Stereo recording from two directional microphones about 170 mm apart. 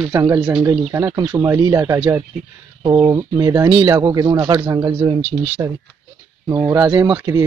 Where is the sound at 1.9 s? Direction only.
5° right (ahead or behind).